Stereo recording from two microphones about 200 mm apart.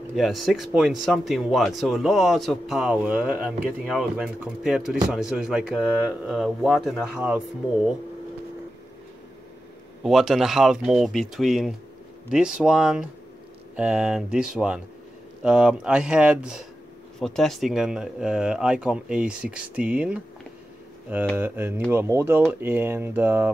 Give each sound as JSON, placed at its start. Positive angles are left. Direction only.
{"t": 0.1, "sound": "speech", "side_deg": 0}
{"t": 10.0, "sound": "speech", "side_deg": 0}
{"t": 21.4, "sound": "speech", "side_deg": -10}